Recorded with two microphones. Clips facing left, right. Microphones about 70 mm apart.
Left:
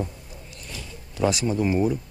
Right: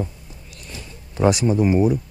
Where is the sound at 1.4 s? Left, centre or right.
Centre.